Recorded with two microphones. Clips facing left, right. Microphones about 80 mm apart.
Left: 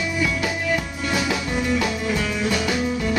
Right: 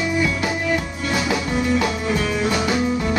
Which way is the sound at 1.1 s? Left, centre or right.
Centre.